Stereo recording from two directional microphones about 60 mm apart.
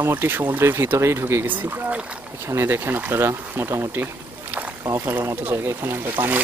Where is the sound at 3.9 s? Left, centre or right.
Right.